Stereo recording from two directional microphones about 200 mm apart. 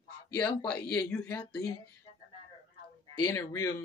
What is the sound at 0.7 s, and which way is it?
Speech, 5° left (ahead or behind).